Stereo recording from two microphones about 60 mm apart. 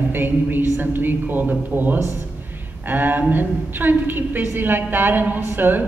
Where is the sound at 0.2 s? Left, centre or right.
Right.